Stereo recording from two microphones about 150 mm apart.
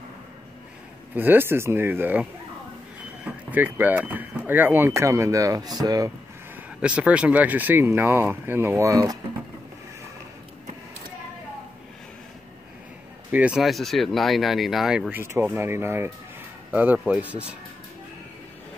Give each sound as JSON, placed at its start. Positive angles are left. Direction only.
{"t": 1.1, "sound": "speech", "side_deg": -15}
{"t": 3.3, "sound": "speech", "side_deg": -10}
{"t": 6.8, "sound": "speech", "side_deg": -5}
{"t": 13.3, "sound": "speech", "side_deg": -10}